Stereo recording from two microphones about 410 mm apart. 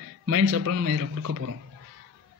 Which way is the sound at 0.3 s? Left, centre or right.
Right.